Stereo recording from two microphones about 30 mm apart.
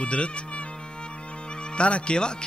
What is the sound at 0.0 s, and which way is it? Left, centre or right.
Speech, left.